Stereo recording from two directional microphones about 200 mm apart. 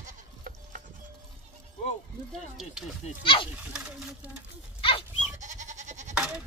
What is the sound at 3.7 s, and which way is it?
Stir, 5° right (ahead or behind).